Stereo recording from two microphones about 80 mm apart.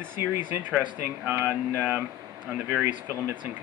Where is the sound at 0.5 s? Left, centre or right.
Centre.